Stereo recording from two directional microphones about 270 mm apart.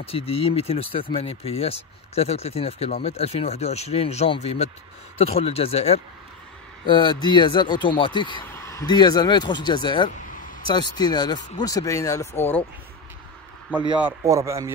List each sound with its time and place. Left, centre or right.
0.0 s speech: left
13.7 s speech: centre